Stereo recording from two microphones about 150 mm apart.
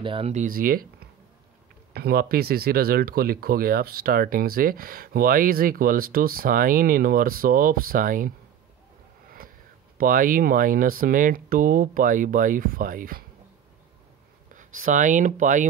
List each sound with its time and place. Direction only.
0.0 s speech: 35° right (ahead or behind)
0.3 s speech: 60° right (ahead or behind)
2.0 s speech: 90° right; by 8.3 s 65° right (ahead or behind)
9.4 s a sound: 75° right (ahead or behind)
9.9 s speech: 65° right (ahead or behind)
14.5 s speech: 60° right (ahead or behind)